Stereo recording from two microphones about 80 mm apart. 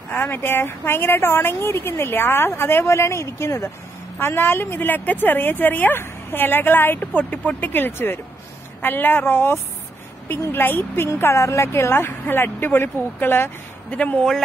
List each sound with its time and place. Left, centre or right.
0.1 s speech: left
13.9 s speech: centre